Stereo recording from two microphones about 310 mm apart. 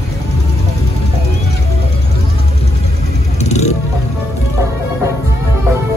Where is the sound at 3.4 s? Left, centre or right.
Left.